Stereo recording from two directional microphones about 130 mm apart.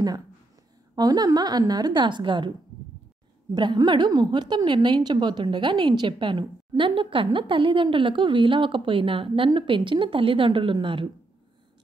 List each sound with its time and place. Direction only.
0.9 s a woman's voice: 30° right (ahead or behind)
3.5 s a woman's voice: 35° right (ahead or behind)